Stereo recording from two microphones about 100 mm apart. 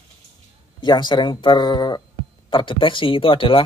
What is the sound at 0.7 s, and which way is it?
Speech, 45° left (ahead or behind).